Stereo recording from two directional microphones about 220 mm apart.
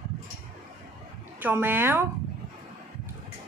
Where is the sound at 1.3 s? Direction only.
10° right (ahead or behind).